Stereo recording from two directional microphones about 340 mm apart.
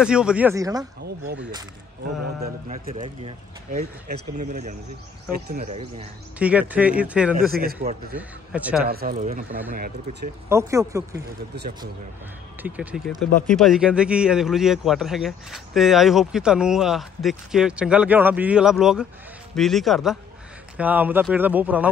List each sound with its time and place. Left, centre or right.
0.0 s speech: centre
1.0 s speech: right
2.4 s speech: right
6.3 s speech: centre
7.5 s speech: right
8.2 s speech: centre
8.8 s speech: right
10.5 s speech: centre
12.6 s speech: centre